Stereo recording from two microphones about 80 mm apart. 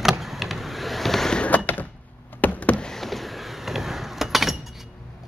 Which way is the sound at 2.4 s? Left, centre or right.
Centre.